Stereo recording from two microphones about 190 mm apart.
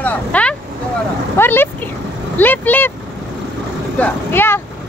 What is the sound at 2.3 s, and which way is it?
Speech, 10° left (ahead or behind).